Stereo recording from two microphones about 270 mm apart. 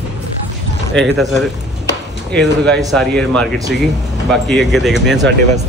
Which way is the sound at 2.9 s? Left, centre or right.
Centre.